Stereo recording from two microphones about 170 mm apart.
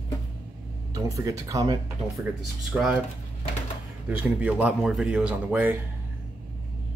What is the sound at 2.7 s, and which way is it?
Speech, centre (ahead or behind).